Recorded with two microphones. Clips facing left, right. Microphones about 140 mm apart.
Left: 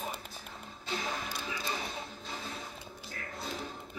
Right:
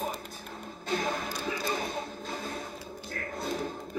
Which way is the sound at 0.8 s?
45° right (ahead or behind).